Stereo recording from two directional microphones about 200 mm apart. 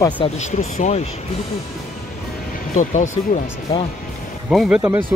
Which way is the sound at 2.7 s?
40° left (ahead or behind).